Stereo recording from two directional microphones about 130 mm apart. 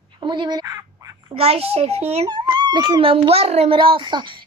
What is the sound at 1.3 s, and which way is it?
Speech, 50° right (ahead or behind).